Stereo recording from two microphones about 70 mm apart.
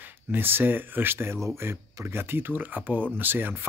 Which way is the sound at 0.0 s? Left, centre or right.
Right.